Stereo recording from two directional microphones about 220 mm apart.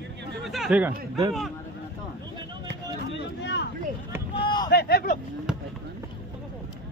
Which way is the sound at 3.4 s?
50° left (ahead or behind).